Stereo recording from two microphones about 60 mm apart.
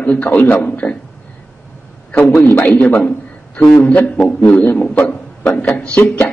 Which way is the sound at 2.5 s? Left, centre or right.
Left.